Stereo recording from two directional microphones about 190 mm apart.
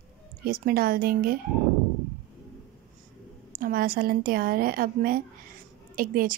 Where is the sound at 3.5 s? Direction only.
50° right (ahead or behind).